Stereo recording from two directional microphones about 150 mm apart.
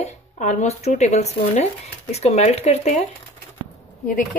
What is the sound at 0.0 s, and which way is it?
Speech, 50° left (ahead or behind).